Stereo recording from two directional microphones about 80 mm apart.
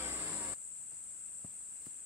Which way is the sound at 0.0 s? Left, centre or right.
Right.